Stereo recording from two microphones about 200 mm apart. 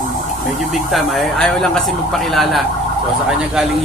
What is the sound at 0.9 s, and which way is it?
Speech, centre (ahead or behind).